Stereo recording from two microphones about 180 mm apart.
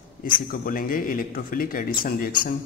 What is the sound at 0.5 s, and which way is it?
A man's voice, 50° left (ahead or behind).